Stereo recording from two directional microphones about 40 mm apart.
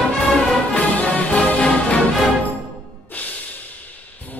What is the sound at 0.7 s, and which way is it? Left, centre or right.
Music, left.